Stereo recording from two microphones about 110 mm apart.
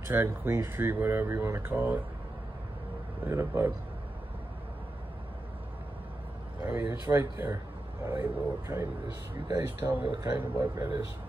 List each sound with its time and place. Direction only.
0.1 s speech: 20° right (ahead or behind)
3.3 s speech: 20° right (ahead or behind)
6.6 s speech: 20° right (ahead or behind)